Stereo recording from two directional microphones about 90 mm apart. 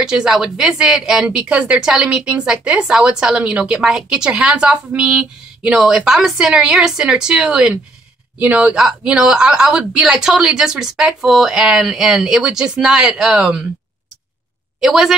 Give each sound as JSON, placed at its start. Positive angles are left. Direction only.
{"t": 0.0, "sound": "a woman's voice", "side_deg": -5}
{"t": 14.8, "sound": "a woman's voice", "side_deg": -5}